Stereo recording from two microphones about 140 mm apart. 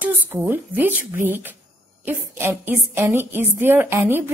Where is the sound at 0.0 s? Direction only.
15° right (ahead or behind).